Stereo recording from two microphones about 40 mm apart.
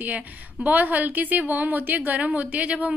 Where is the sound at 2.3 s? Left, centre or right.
Right.